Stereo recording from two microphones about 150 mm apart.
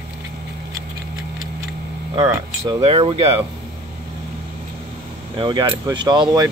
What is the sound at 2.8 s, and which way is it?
Speech, 40° right (ahead or behind).